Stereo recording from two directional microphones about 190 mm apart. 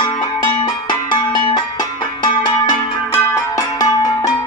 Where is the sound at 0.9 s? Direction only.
25° left (ahead or behind).